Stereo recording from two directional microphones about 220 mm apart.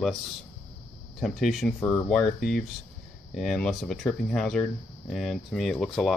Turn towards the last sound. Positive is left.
turn(degrees=0)  # may be behind; listen again after turning